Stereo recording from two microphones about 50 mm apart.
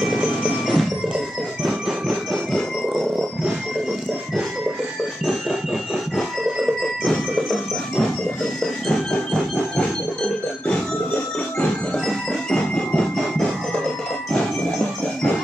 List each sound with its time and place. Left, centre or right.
0.0 s music: centre
1.6 s a sound: centre
9.1 s train: centre
12.1 s music: centre